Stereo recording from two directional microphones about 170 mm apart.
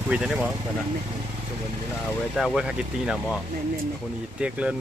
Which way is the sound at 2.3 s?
5° right (ahead or behind).